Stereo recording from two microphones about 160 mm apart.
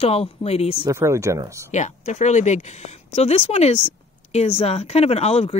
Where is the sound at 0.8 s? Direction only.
20° right (ahead or behind).